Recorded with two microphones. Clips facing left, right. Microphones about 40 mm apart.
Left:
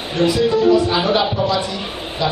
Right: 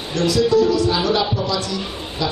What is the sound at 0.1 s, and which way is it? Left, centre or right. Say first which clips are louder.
Speech: even; left.